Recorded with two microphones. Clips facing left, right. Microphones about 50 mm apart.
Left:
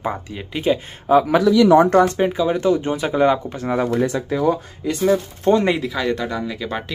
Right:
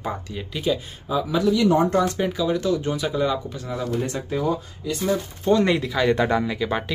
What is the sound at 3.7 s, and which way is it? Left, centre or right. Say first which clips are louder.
Speech: left 7 dB; left.